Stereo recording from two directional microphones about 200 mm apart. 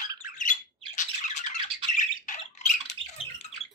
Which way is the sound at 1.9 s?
40° left (ahead or behind).